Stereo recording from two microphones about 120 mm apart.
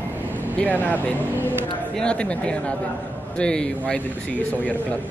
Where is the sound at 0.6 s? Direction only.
15° left (ahead or behind).